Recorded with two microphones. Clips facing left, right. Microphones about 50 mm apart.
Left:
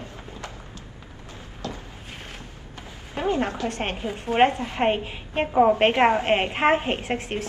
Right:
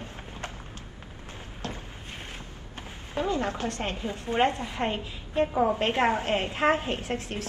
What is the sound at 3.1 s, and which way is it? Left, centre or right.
A woman's voice, left.